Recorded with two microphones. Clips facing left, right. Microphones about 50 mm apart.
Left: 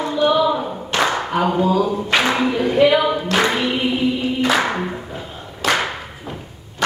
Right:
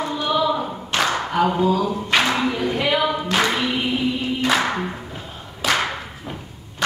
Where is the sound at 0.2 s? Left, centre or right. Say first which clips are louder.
Left 5 dB; centre.